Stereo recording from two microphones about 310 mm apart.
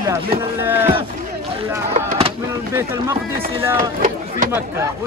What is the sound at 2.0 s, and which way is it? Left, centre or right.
Vehicle, right.